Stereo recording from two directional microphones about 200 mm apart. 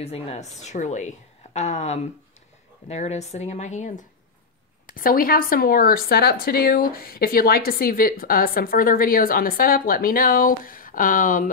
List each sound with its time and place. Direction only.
0.0 s a woman's voice: 30° left (ahead or behind)